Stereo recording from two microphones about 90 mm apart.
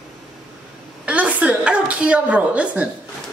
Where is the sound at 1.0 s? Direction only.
15° right (ahead or behind).